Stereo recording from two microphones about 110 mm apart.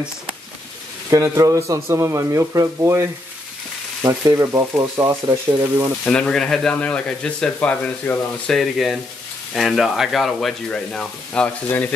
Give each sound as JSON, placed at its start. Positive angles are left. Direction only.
{"t": 1.1, "sound": "speech", "side_deg": -25}
{"t": 6.0, "sound": "speech", "side_deg": 10}
{"t": 8.5, "sound": "speech", "side_deg": 0}